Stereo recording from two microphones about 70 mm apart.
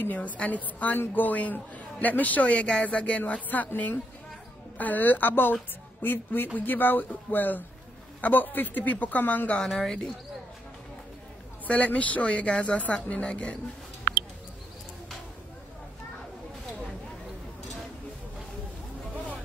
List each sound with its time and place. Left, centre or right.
0.0 s a woman's voice: left
9.6 s speech: centre
11.6 s speech: left